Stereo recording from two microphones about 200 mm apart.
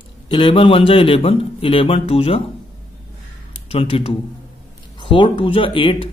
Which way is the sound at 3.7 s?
25° left (ahead or behind).